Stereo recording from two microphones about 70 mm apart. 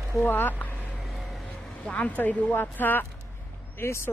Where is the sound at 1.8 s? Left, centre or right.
Centre.